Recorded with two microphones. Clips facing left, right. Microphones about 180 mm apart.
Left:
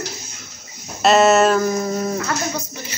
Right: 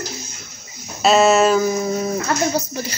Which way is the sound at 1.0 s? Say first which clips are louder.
Even; centre (ahead or behind).